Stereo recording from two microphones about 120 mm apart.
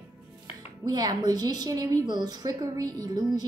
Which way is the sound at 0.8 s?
30° right (ahead or behind).